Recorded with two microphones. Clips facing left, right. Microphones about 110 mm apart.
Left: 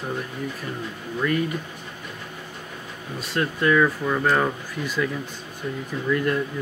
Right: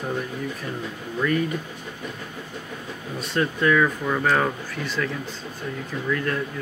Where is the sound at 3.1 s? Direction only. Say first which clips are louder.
Right 1 dB; 5° left (ahead or behind).